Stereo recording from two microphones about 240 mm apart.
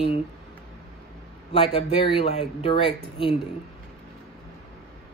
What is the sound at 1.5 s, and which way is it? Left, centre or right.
Speech, left.